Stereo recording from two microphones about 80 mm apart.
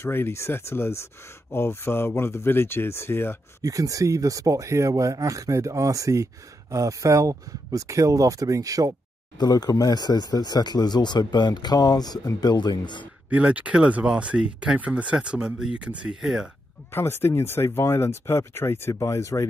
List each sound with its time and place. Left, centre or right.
0.0 s speech: left
3.6 s speech: right
9.4 s speech: left
13.3 s speech: centre
16.9 s speech: left